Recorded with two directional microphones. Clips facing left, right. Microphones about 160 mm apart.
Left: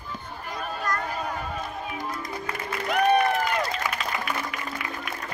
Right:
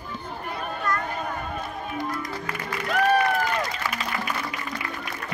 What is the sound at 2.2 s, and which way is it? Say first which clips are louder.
Music: even; 25° left (ahead or behind).